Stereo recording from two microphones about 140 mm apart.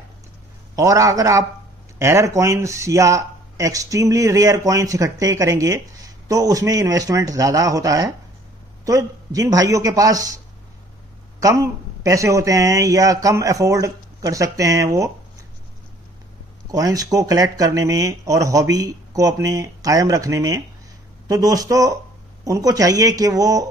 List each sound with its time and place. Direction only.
0.7 s speech: 25° right (ahead or behind)
11.4 s speech: 25° right (ahead or behind)
16.7 s speech: 25° right (ahead or behind)